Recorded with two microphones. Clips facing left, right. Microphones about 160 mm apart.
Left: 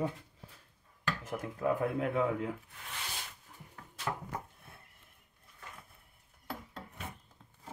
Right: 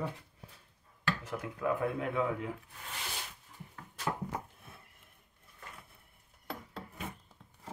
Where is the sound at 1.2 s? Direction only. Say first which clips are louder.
Left 1 dB; 50° left (ahead or behind).